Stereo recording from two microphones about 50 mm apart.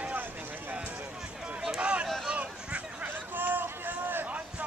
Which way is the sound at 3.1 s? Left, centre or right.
Right.